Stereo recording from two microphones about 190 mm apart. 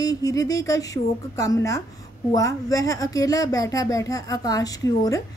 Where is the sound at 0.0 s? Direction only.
20° left (ahead or behind).